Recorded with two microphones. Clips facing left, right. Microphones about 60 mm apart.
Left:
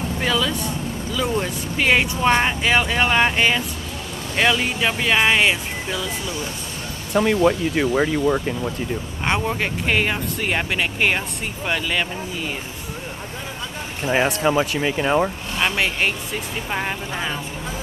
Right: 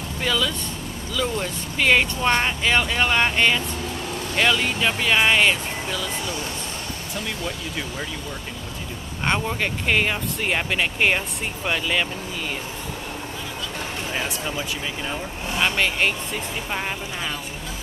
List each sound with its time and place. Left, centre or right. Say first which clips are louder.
0.2 s speech: left 1 dB; centre
7.2 s speech: left 14 dB; left
9.2 s speech: left 1 dB; centre
14.1 s speech: left 12 dB; left
15.6 s speech: left 1 dB; centre